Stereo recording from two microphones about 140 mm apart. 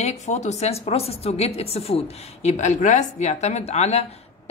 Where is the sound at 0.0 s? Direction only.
55° left (ahead or behind).